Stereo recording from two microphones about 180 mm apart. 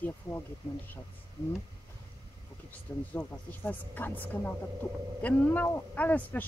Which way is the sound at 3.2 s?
10° left (ahead or behind).